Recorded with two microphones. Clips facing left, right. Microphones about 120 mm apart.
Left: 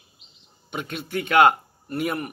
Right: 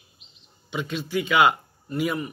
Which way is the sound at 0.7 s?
55° left (ahead or behind).